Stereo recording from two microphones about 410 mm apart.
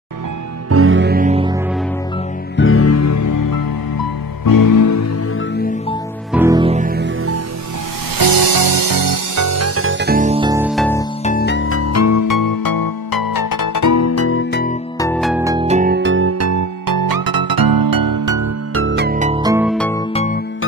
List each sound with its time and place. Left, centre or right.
0.7 s music: right; by 1.6 s centre
2.5 s music: left
5.6 s music: centre
6.3 s music: centre
8.2 s music: right; by 11.1 s centre
11.2 s music: left
15.0 s music: centre; by 18.5 s right
18.8 s music: right; by 20.0 s centre